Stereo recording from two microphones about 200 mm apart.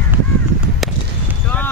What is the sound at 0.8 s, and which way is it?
Basketball bounce, centre (ahead or behind).